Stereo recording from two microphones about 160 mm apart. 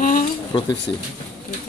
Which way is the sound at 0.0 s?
55° left (ahead or behind).